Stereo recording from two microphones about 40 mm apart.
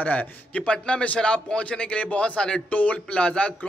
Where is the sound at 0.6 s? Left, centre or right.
Left.